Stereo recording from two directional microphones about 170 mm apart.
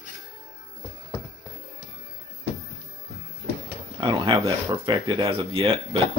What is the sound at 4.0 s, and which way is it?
Speech, 25° right (ahead or behind).